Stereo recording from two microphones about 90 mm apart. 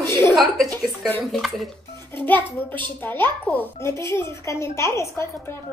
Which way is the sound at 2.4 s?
65° right (ahead or behind).